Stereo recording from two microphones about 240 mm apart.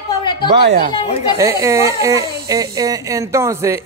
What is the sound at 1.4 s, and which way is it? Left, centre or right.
Speech, centre.